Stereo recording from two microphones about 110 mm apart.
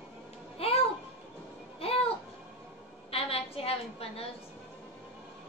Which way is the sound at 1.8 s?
60° left (ahead or behind).